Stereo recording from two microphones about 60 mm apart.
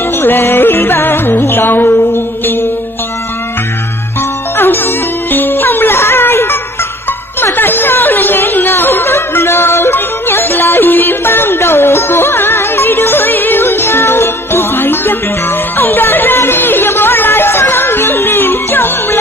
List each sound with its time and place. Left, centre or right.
0.2 s music: left
4.6 s music: left
7.3 s chatter: left